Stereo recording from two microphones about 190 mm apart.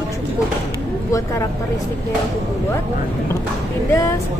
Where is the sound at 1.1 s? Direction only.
15° left (ahead or behind).